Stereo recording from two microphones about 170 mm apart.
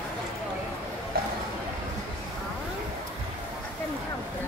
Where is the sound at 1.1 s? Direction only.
60° right (ahead or behind).